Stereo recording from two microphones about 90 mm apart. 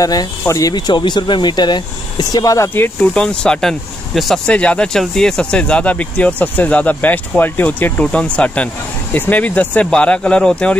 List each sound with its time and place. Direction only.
0.0 s speech: 45° left (ahead or behind)
3.0 s speech: 10° left (ahead or behind)
4.6 s speech: 10° left (ahead or behind)